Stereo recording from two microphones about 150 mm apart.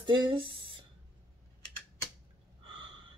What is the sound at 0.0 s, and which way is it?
Speech, 30° right (ahead or behind).